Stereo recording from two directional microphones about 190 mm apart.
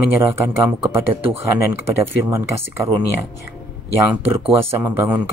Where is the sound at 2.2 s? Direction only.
15° right (ahead or behind).